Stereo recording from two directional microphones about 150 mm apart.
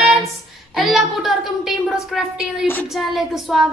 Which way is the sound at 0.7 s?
Centre (ahead or behind).